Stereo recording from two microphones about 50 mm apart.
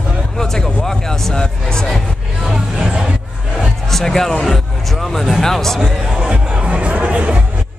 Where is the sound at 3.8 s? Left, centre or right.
Centre.